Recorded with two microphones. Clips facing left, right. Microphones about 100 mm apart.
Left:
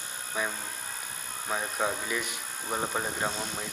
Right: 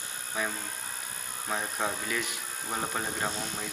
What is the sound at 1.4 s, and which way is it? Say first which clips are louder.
Speech: left 2 dB; 10° left (ahead or behind).